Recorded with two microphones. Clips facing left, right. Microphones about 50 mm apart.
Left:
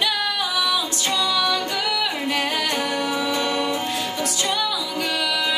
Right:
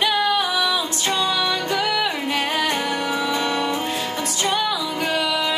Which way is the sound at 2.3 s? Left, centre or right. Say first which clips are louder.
Right 2 dB; right.